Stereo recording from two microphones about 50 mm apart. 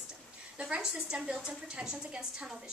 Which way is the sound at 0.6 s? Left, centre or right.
Centre.